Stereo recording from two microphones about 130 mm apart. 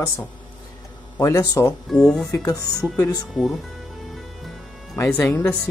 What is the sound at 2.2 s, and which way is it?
Speech, 25° left (ahead or behind).